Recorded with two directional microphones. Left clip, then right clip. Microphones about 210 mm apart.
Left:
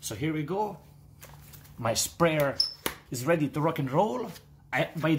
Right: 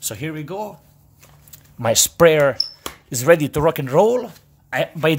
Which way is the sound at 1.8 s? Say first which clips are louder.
Right 12 dB; 50° right (ahead or behind).